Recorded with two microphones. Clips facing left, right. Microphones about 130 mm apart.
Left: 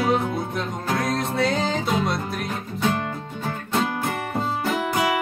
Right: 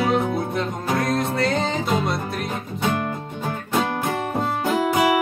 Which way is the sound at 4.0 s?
15° right (ahead or behind).